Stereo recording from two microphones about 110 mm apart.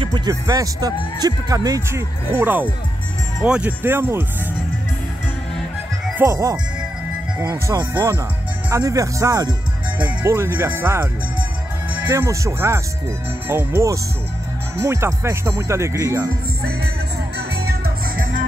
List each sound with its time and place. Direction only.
0.0 s speech: 40° right (ahead or behind); by 3.7 s 10° right (ahead or behind)
3.8 s speech: 20° right (ahead or behind)
6.1 s speech: 25° right (ahead or behind)
12.1 s speech: 25° right (ahead or behind)